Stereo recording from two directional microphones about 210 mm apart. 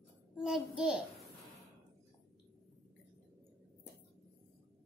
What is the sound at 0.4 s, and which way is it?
Speech, 5° right (ahead or behind).